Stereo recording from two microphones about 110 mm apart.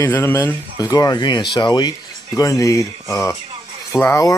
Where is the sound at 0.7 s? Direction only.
35° left (ahead or behind).